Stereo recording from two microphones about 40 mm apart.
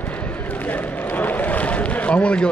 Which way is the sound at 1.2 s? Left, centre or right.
Left.